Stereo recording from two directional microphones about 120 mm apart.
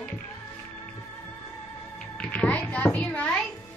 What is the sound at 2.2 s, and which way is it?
Music, 10° left (ahead or behind).